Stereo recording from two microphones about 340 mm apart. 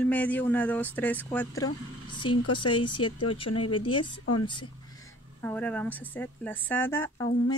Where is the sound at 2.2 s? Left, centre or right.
Left.